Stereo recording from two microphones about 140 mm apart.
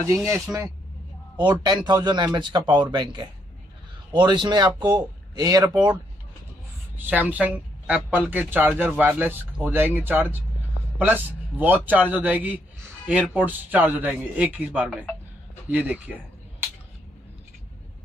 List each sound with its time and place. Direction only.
0.1 s speech: 20° right (ahead or behind)
1.6 s speech: 30° right (ahead or behind)
7.0 s speech: 10° right (ahead or behind)